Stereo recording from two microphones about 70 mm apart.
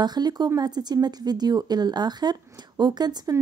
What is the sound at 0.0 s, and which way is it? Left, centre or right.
A woman's voice, right.